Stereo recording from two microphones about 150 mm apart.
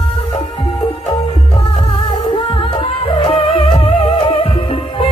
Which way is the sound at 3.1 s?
35° left (ahead or behind).